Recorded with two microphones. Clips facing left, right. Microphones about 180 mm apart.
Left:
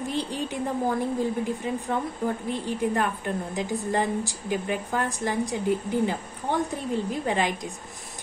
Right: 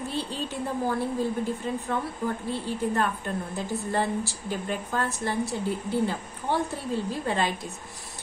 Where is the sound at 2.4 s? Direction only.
15° left (ahead or behind).